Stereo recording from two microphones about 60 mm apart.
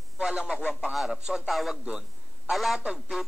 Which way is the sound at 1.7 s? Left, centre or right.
Centre.